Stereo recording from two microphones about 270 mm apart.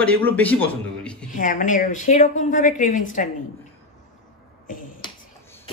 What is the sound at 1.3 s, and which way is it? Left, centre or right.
A woman's voice, left.